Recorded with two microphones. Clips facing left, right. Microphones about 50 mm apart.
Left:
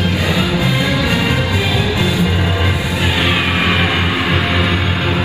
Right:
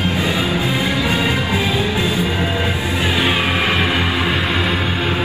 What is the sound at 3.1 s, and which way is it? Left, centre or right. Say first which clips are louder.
Music: left 1 dB; left.